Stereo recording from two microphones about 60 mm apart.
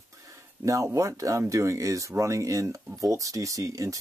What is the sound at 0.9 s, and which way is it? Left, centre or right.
Speech, right.